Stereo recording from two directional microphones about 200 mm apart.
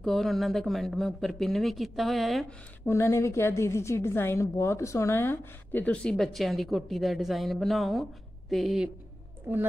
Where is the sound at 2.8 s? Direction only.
15° left (ahead or behind).